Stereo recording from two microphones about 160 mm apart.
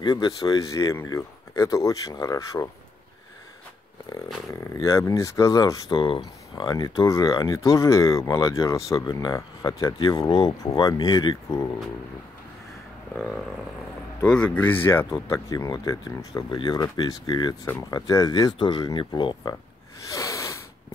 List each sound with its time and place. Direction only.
0.0 s speech: 25° left (ahead or behind)
4.5 s speech: 20° left (ahead or behind)
14.2 s speech: 5° left (ahead or behind); by 19.5 s 30° left (ahead or behind)
20.1 s a sound: 20° left (ahead or behind)